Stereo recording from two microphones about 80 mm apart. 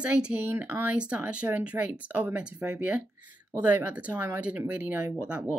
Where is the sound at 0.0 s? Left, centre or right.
Centre.